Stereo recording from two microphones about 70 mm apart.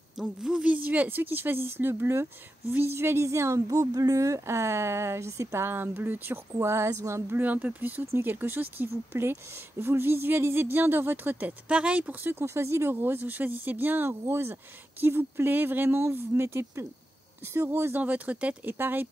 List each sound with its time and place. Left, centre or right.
0.2 s speech: centre
0.7 s speech: right
7.3 s speech: right
11.7 s speech: centre
12.2 s speech: right